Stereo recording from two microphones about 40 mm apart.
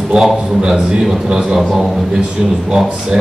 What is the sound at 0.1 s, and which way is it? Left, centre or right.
Speech, centre.